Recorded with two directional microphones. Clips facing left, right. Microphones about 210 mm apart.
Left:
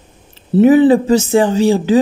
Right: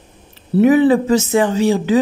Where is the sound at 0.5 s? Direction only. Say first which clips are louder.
Left 3 dB; 30° left (ahead or behind).